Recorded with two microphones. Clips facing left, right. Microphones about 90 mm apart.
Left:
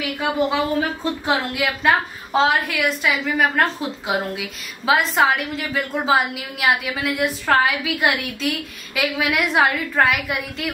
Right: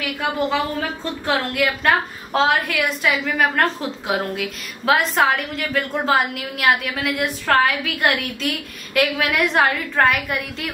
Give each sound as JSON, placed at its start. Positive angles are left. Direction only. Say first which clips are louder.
{"t": 0.2, "sound": "a woman's voice", "louder": "left 1 dB", "side_deg": 10}